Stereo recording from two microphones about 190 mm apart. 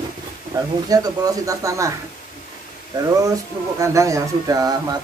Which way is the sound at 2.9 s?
20° right (ahead or behind).